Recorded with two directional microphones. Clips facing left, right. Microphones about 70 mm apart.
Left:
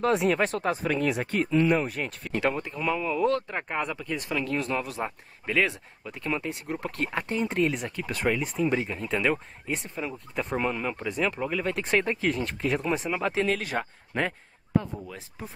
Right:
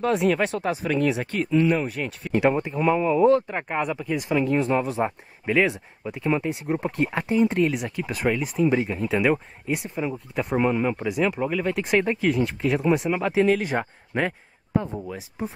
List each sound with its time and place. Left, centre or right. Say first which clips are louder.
0.0 s speech: right 2 dB; centre
2.4 s speech: right 6 dB; right
7.1 s speech: right 8 dB; centre